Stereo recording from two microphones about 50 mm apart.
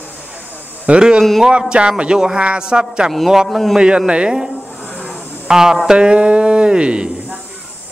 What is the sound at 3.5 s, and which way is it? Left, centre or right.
Speech, centre.